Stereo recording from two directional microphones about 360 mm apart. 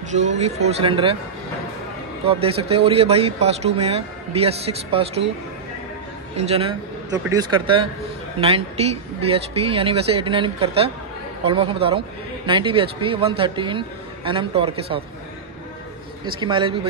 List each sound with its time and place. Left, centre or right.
0.1 s speech: centre
2.2 s speech: centre
6.3 s speech: centre
16.3 s speech: centre